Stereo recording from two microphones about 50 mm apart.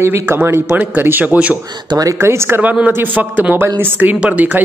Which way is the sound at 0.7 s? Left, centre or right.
Right.